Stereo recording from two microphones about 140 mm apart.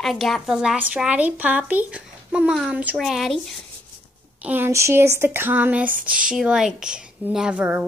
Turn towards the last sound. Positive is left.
turn(degrees=-10)  # may be behind; listen again after turning